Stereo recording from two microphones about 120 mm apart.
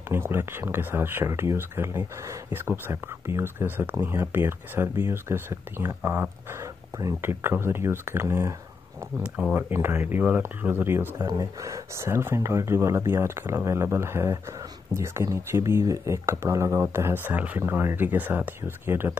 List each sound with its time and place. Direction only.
0.1 s speech: 20° right (ahead or behind)
9.2 s speech: 10° right (ahead or behind)
9.6 s speech: 20° right (ahead or behind)
11.1 s speech: 30° right (ahead or behind)